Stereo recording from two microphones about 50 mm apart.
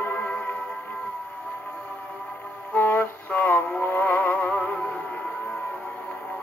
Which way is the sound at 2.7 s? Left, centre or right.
Left.